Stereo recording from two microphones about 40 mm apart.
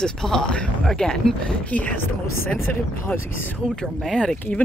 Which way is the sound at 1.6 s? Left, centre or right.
Left.